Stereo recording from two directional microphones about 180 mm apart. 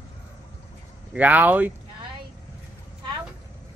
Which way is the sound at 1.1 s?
10° right (ahead or behind).